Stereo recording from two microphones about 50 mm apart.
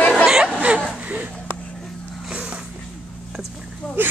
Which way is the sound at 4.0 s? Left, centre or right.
Right.